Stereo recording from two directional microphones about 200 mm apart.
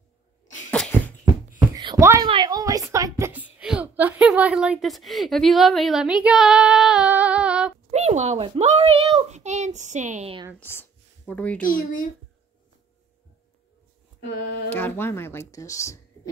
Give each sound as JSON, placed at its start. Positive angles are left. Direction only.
{"t": 0.7, "sound": "a sound", "side_deg": 5}
{"t": 1.8, "sound": "a sound", "side_deg": -20}
{"t": 7.9, "sound": "a child's voice", "side_deg": -35}
{"t": 10.6, "sound": "speech", "side_deg": 10}
{"t": 11.6, "sound": "speech", "side_deg": 45}
{"t": 14.7, "sound": "speech", "side_deg": 10}